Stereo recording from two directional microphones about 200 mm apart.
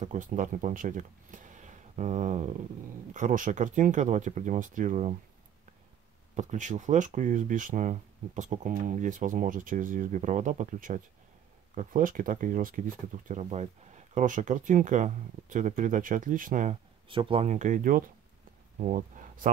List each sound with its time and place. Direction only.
0.0 s speech: 40° right (ahead or behind)
6.3 s speech: 40° right (ahead or behind)
17.1 s speech: 25° right (ahead or behind); by 19.5 s 40° right (ahead or behind)